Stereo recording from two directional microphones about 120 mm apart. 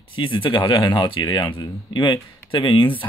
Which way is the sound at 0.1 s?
45° left (ahead or behind).